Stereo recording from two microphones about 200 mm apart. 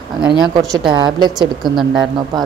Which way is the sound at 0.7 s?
20° right (ahead or behind).